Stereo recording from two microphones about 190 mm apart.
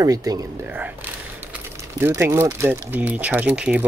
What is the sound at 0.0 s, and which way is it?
Speech, 20° right (ahead or behind).